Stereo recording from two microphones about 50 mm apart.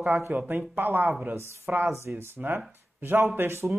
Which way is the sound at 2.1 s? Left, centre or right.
Right.